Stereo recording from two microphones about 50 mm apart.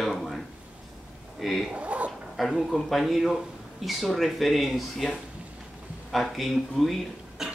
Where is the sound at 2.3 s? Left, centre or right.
Centre.